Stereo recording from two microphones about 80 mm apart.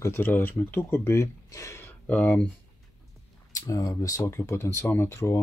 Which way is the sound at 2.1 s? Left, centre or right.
Centre.